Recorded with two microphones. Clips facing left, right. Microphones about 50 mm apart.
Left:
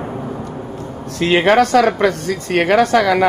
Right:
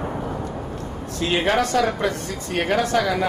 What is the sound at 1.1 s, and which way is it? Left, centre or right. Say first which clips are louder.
Speech: left 8 dB; left.